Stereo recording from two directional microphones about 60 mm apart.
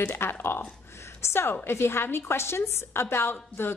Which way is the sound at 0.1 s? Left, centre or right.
Left.